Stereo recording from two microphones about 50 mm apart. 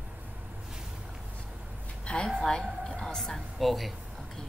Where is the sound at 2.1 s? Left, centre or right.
Left.